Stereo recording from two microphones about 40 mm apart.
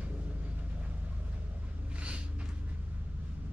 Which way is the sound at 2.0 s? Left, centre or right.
Right.